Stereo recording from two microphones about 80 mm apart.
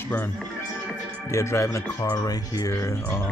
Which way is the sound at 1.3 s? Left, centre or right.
Left.